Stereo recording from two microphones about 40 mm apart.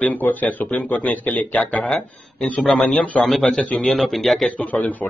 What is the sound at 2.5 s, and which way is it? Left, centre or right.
Speech, centre.